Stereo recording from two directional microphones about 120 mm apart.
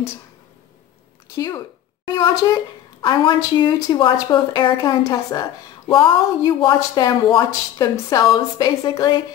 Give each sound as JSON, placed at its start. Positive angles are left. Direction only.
{"t": 1.3, "sound": "a woman's voice", "side_deg": 25}